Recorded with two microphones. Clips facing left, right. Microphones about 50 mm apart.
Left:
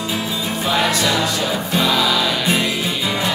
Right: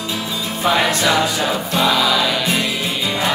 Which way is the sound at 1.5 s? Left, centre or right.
Centre.